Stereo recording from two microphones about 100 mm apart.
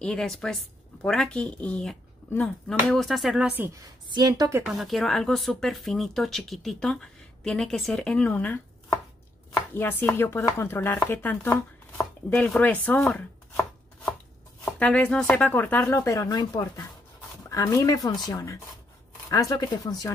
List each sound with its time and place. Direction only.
0.0 s a woman's voice: 5° left (ahead or behind)
3.4 s a woman's voice: 20° right (ahead or behind)
4.1 s a woman's voice: 40° right (ahead or behind)
4.6 s speech: centre (ahead or behind); by 8.5 s 15° left (ahead or behind)
9.8 s speech: 20° left (ahead or behind)
14.6 s speech: 15° left (ahead or behind)
15.9 s speech: 30° left (ahead or behind)